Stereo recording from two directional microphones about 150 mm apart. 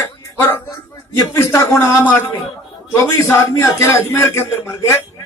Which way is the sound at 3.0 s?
20° left (ahead or behind).